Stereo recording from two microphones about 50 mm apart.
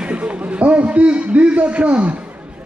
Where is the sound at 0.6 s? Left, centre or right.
Right.